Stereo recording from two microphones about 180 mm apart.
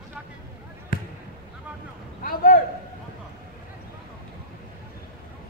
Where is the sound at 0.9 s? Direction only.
50° left (ahead or behind).